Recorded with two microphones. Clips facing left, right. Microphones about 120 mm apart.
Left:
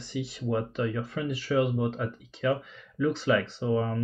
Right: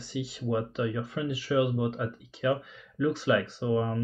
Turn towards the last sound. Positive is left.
turn(degrees=-10)  # may be behind; listen again after turning